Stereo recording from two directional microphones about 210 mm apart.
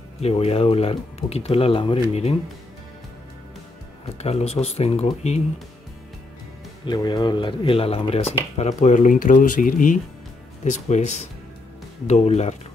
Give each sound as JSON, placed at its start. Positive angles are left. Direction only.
{"t": 0.2, "sound": "speech", "side_deg": 30}
{"t": 4.2, "sound": "speech", "side_deg": 30}
{"t": 6.9, "sound": "speech", "side_deg": 20}
{"t": 12.1, "sound": "speech", "side_deg": 30}